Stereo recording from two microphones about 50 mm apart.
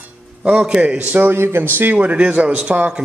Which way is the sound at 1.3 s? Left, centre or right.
Right.